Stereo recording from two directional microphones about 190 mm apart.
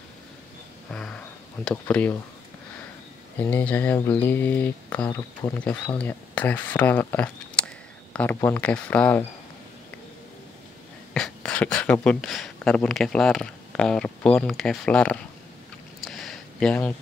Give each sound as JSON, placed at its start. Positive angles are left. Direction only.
{"t": 0.9, "sound": "speech", "side_deg": 5}
{"t": 3.3, "sound": "speech", "side_deg": 10}
{"t": 5.4, "sound": "speech", "side_deg": 20}
{"t": 11.1, "sound": "speech", "side_deg": 5}
{"t": 16.0, "sound": "a sound", "side_deg": 0}